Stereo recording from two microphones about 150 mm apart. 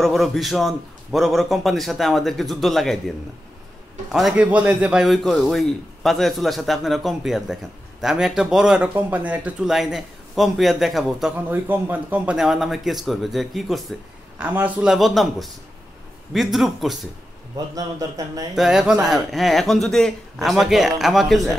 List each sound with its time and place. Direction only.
0.0 s a man's voice: centre (ahead or behind)
17.7 s a man's voice: 25° right (ahead or behind)
18.5 s a man's voice: 5° right (ahead or behind)